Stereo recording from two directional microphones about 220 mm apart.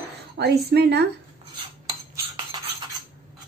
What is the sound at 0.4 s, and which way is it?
Speech, 50° right (ahead or behind).